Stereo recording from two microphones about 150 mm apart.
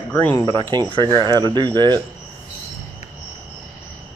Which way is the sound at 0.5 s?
30° right (ahead or behind).